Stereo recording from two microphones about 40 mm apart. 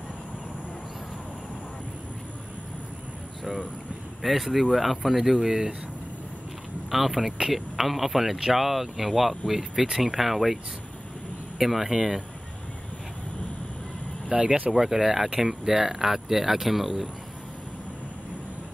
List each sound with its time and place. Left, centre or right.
4.2 s speech: centre
5.4 s speech: centre
6.9 s speech: centre
14.3 s speech: right
14.7 s speech: centre